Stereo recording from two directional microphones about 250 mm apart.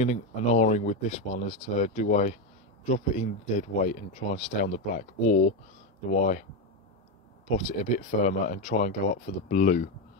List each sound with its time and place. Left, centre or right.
0.0 s speech: left
7.4 s speech: left